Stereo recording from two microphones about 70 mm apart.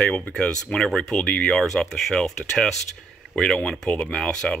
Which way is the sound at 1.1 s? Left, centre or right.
Centre.